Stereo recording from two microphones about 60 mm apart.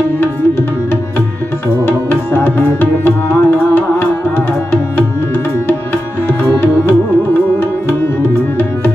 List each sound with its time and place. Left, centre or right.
1.9 s tabla: left
6.5 s music: left